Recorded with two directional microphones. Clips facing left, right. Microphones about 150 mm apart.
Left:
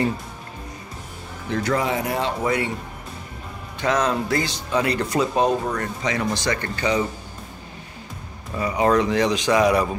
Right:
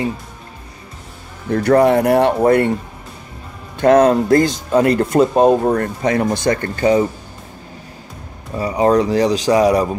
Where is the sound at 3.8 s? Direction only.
50° right (ahead or behind).